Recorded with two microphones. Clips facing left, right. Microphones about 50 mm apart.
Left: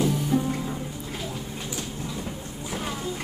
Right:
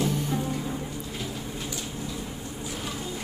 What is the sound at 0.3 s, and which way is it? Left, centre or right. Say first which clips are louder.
Music: left 5 dB; centre.